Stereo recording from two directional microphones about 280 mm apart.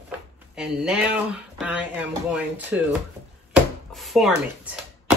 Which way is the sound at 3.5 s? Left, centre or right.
Centre.